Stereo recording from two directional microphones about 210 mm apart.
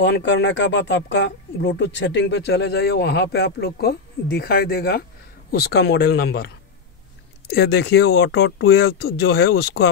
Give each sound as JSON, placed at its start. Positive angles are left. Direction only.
{"t": 0.0, "sound": "speech", "side_deg": 55}